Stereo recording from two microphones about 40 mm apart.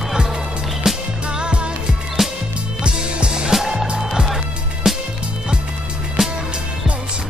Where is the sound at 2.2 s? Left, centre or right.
Centre.